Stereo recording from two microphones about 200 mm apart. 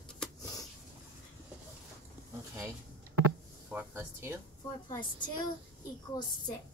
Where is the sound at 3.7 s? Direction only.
10° right (ahead or behind).